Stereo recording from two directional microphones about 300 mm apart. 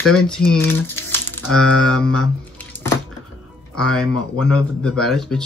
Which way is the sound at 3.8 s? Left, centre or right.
Left.